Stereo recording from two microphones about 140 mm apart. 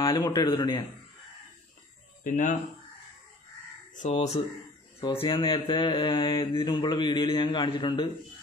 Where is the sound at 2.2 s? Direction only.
70° left (ahead or behind).